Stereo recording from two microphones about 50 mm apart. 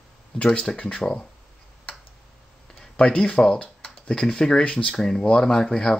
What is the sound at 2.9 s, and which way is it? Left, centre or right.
Speech, centre.